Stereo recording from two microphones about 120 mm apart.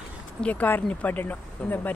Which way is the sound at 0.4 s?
10° left (ahead or behind).